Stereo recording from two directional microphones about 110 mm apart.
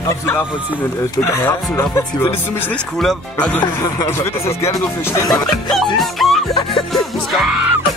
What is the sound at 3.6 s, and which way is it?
Speech, 35° left (ahead or behind).